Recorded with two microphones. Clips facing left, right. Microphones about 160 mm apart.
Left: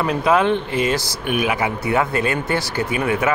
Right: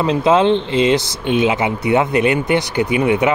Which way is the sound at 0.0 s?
25° right (ahead or behind).